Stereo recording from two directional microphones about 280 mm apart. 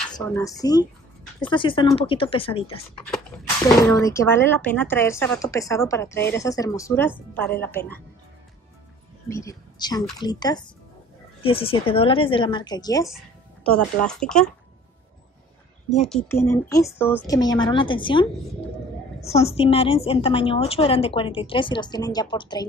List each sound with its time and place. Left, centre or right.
0.2 s a woman's voice: centre
9.3 s a woman's voice: centre
13.7 s speech: centre
16.0 s a woman's voice: centre